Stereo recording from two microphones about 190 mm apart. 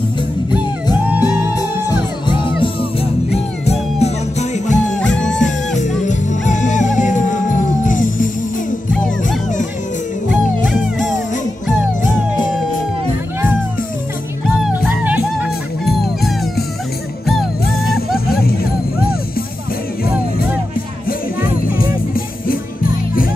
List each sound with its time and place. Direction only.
1.0 s music: 10° right (ahead or behind)
2.2 s music: 25° left (ahead or behind)
5.0 s music: 5° left (ahead or behind)
5.8 s music: 40° left (ahead or behind)
8.9 s music: 5° left (ahead or behind)
10.7 s music: centre (ahead or behind)
14.6 s music: 5° right (ahead or behind)
18.2 s music: 55° left (ahead or behind)
21.4 s music: 50° left (ahead or behind)